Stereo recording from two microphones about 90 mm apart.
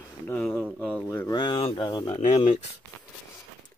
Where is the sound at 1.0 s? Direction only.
30° left (ahead or behind).